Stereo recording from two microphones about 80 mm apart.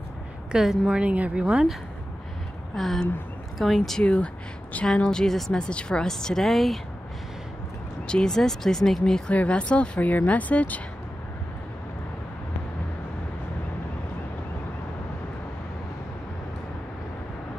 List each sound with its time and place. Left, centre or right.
0.5 s a woman's voice: centre
2.7 s speech: centre
4.0 s a woman's voice: centre
8.1 s speech: centre
9.3 s a woman's voice: centre